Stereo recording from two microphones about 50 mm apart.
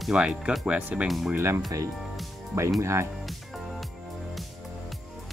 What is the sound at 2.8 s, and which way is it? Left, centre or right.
Speech, right.